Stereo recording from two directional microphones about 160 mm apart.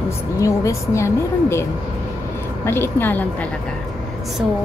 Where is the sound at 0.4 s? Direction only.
20° left (ahead or behind).